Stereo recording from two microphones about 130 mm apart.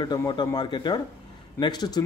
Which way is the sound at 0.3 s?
35° left (ahead or behind).